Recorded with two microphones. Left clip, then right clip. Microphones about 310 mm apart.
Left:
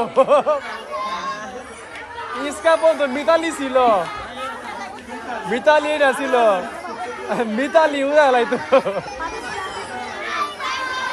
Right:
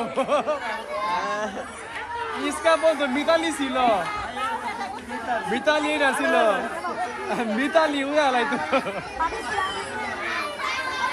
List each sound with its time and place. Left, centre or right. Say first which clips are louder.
0.2 s speech: left 9 dB; left
2.4 s speech: left 5 dB; left
5.5 s speech: left 8 dB; left